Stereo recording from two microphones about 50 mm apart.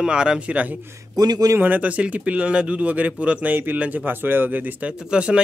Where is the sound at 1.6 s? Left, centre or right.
Right.